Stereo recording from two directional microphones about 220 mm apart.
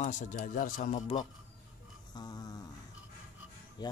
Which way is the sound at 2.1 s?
20° left (ahead or behind).